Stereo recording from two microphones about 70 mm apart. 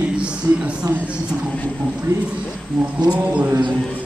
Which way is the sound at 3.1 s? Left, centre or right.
Centre.